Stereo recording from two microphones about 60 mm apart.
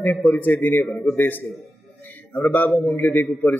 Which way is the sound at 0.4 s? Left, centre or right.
Left.